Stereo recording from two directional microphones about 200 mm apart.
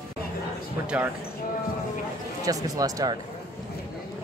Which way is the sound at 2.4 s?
15° right (ahead or behind).